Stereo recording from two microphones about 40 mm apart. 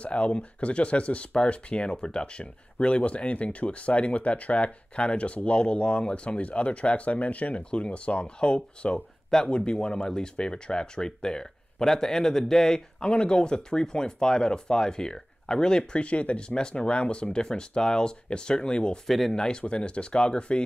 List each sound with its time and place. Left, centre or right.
0.0 s speech: left
13.1 s speech: left
19.0 s speech: centre
19.3 s speech: centre